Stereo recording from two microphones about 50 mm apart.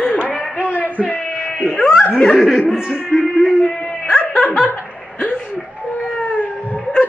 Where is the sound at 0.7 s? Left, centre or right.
Left.